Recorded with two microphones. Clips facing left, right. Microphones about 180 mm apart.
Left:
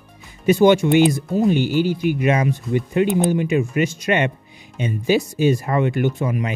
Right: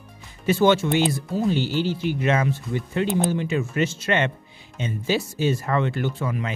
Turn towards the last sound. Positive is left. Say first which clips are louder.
# left 5 dB
turn(degrees=15)  # may be behind; listen again after turning